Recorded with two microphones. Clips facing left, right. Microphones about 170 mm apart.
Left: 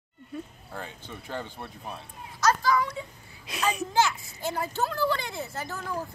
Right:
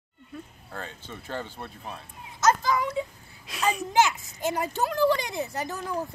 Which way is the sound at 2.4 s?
20° right (ahead or behind).